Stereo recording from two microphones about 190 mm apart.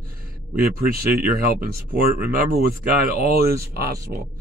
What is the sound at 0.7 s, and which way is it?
Speech, 50° right (ahead or behind).